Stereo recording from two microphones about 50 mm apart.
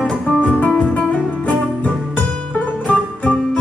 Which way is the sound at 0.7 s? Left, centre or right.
Left.